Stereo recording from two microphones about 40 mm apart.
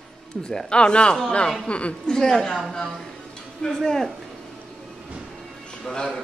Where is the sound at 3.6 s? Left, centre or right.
Centre.